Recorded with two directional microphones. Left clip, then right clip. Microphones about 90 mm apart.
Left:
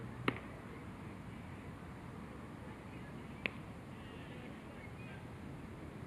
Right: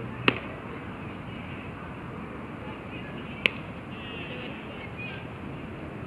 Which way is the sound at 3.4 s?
15° left (ahead or behind).